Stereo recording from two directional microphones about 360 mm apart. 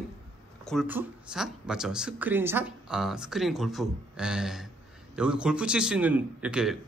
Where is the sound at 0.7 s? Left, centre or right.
Centre.